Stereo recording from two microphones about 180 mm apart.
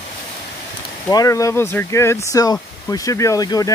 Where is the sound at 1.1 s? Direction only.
20° left (ahead or behind).